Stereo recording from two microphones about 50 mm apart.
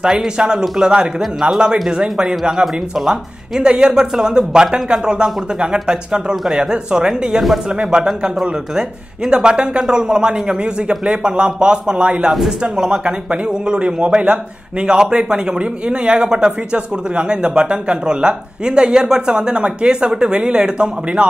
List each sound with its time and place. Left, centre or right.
0.0 s speech: centre
7.2 s speech: centre
7.7 s speech: centre